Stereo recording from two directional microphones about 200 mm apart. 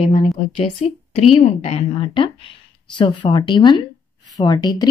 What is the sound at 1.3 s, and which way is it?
A woman's voice, 30° left (ahead or behind).